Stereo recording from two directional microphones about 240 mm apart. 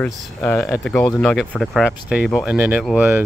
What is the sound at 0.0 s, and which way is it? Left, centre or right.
Speech, centre.